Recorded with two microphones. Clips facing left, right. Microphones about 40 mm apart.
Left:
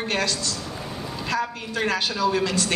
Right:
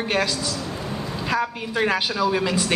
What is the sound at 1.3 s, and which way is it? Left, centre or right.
Speech, centre.